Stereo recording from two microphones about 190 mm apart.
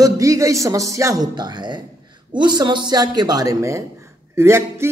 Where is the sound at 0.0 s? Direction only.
15° right (ahead or behind).